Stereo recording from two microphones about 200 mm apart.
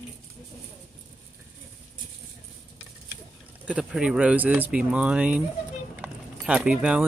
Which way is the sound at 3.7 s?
5° right (ahead or behind).